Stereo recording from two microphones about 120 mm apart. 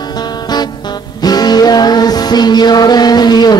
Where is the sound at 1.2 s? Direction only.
35° left (ahead or behind).